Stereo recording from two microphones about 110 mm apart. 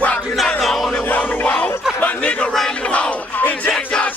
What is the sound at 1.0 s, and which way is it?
Music, 15° left (ahead or behind).